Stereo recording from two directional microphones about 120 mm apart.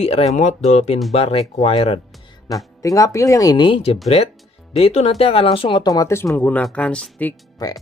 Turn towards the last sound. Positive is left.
turn(degrees=30)  # may be behind; listen again after turning